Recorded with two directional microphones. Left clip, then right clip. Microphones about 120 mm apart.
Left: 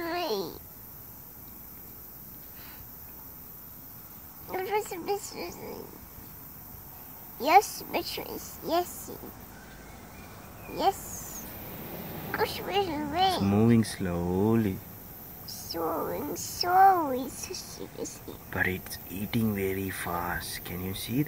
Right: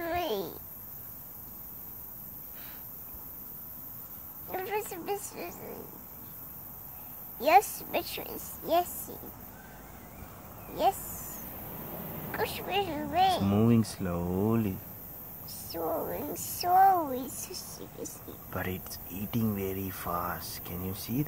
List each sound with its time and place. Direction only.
0.0 s a sound: 5° right (ahead or behind)
4.5 s a sound: 5° left (ahead or behind)
5.3 s speech: 5° left (ahead or behind)
7.3 s a woman's voice: 10° left (ahead or behind)
10.7 s speech: 10° left (ahead or behind)
12.3 s speech: 10° left (ahead or behind)
13.4 s speech: 30° right (ahead or behind)
15.7 s speech: 10° left (ahead or behind)
16.1 s speech: centre (ahead or behind)
16.3 s a woman's voice: 90° right
16.6 s a child's voice: 20° left (ahead or behind)
18.5 s speech: 20° right (ahead or behind)